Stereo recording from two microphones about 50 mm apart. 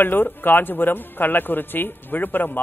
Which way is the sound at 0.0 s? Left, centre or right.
Left.